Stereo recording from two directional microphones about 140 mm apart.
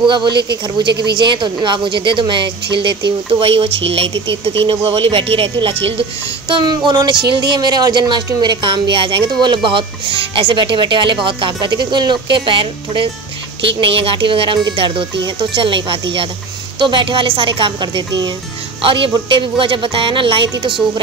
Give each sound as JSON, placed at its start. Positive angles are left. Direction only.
{"t": 0.7, "sound": "speech", "side_deg": -35}